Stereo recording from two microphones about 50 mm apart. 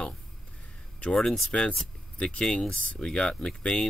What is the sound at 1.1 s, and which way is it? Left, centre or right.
Speech, centre.